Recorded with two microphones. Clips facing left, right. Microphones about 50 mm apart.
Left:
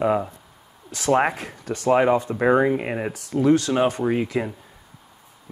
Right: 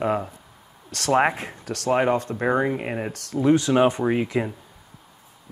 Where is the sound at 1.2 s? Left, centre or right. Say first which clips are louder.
Right 1 dB; right.